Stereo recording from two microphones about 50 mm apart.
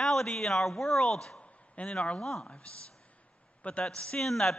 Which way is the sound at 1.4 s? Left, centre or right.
Left.